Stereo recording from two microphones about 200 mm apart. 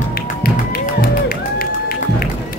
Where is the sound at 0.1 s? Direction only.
50° left (ahead or behind).